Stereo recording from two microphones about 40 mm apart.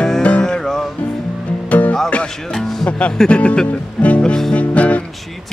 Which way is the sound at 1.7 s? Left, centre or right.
Left.